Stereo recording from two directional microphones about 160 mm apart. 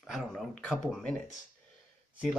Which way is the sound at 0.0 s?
Centre (ahead or behind).